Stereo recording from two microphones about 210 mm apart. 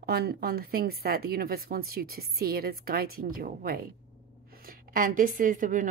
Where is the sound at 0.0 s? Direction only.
45° right (ahead or behind).